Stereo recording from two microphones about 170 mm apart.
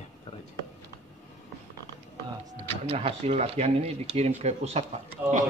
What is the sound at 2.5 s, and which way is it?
Speech, 35° right (ahead or behind).